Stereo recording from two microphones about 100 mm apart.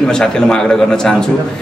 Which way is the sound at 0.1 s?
5° left (ahead or behind).